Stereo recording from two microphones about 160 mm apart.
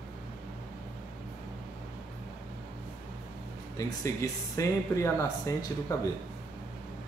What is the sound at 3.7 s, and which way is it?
Speech, 20° left (ahead or behind).